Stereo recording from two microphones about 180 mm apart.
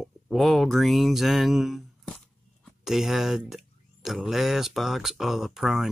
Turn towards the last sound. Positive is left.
turn(degrees=0)  # may be behind; listen again after turning